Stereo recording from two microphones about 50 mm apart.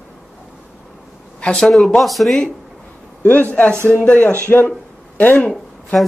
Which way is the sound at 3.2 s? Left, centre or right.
Left.